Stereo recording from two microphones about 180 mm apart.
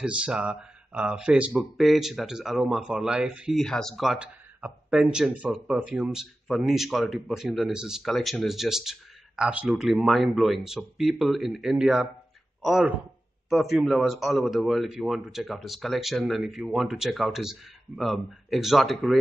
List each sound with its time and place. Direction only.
0.0 s speech: 5° right (ahead or behind)